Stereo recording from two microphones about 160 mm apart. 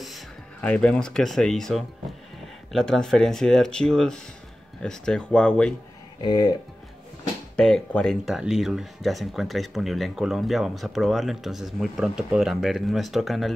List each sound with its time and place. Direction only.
0.0 s speech: 5° left (ahead or behind)
6.2 s speech: 25° left (ahead or behind)
7.5 s speech: 5° left (ahead or behind)